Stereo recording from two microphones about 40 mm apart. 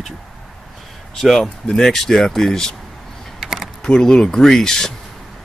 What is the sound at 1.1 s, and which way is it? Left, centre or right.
Speech, centre.